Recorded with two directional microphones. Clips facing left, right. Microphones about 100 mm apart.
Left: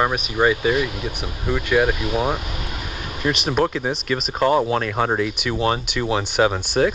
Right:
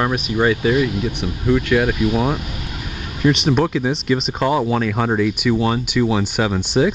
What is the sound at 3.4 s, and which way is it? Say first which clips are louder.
Speech: right 3 dB; 5° left (ahead or behind).